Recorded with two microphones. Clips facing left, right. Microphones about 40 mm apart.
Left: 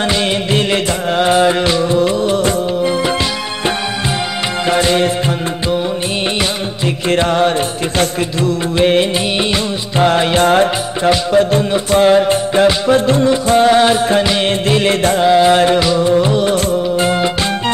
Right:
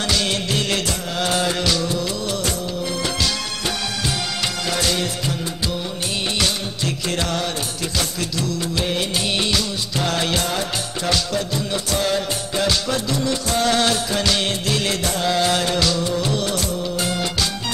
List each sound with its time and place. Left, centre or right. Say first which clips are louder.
0.1 s music: left 6 dB; left
4.6 s music: left 11 dB; left
7.1 s music: left 13 dB; left
10.4 s music: left 13 dB; left
11.7 s music: left 11 dB; left
15.2 s music: left 10 dB; left
16.1 s music of bollywood: left 10 dB; left